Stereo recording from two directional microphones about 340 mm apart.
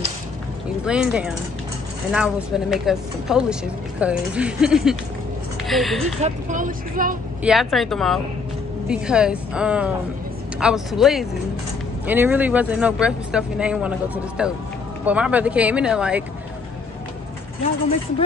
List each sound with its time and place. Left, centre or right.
0.8 s speech: centre
6.2 s speech: right
7.4 s speech: centre